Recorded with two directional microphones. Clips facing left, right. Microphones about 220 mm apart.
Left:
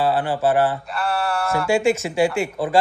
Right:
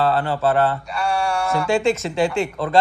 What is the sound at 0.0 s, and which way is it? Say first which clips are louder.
Speech: even; 15° left (ahead or behind).